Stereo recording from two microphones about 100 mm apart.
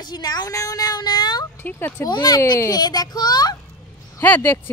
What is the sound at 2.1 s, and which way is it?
A child's voice, 40° left (ahead or behind).